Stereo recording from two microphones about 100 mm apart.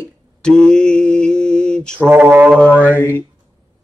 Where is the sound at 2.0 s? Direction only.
20° right (ahead or behind).